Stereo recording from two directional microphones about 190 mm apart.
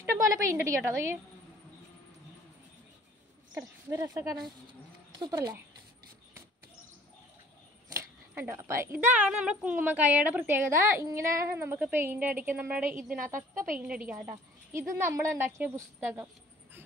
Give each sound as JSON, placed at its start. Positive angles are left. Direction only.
{"t": 0.0, "sound": "a woman's voice", "side_deg": -15}
{"t": 3.5, "sound": "a woman's voice", "side_deg": -15}
{"t": 7.9, "sound": "a woman's voice", "side_deg": -15}